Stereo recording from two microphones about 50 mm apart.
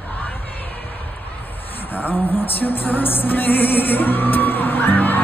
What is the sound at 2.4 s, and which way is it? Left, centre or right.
Music, left.